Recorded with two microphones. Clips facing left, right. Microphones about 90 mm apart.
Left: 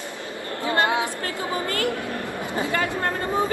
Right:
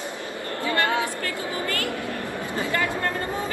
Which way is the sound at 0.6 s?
20° left (ahead or behind).